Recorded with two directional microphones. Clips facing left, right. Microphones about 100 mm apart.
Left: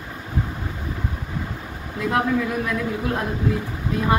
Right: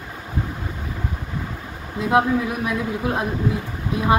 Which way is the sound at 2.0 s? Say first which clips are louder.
Right 3 dB; 20° right (ahead or behind).